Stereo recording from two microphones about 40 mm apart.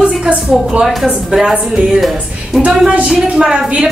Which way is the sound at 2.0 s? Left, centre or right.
Centre.